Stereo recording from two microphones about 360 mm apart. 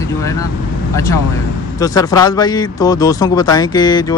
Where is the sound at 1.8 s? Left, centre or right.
Centre.